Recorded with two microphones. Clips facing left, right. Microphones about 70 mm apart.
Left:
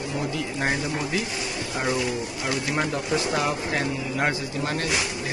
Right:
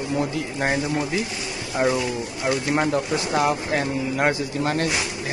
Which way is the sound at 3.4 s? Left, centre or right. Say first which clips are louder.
Right 3 dB; right.